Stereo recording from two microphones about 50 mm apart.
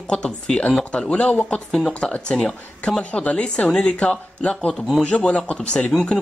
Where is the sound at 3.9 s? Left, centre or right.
Left.